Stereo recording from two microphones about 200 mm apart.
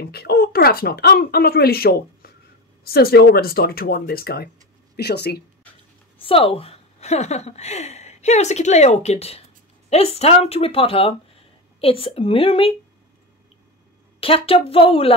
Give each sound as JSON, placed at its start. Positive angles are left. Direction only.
{"t": 0.0, "sound": "speech", "side_deg": 50}
{"t": 6.2, "sound": "a woman's voice", "side_deg": 25}
{"t": 14.2, "sound": "speech", "side_deg": 30}